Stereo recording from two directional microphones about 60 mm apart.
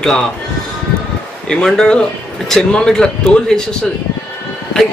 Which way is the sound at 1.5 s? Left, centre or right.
Centre.